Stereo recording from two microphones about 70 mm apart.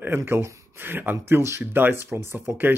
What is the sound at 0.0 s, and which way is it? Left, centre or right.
Speech, right.